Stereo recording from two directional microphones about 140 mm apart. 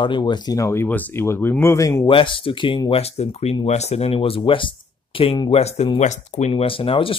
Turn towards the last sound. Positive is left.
turn(degrees=40)  # may be behind; listen again after turning